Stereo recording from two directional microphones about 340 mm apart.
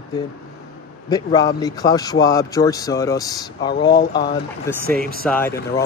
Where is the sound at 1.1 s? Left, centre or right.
Centre.